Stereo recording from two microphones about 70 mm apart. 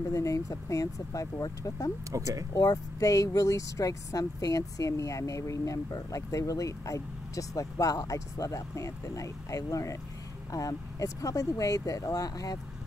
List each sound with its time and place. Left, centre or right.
0.1 s speech: left
2.0 s speech: right
2.5 s speech: left